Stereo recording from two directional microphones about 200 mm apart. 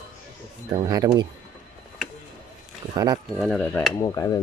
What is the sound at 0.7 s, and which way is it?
Speech, 20° right (ahead or behind).